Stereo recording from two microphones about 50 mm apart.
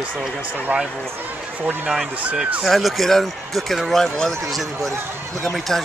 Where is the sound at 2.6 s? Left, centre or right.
Centre.